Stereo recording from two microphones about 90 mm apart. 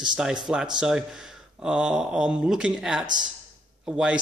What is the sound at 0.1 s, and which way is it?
Speech, 10° right (ahead or behind).